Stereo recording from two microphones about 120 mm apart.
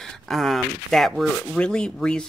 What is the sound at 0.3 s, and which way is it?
Speech, centre (ahead or behind).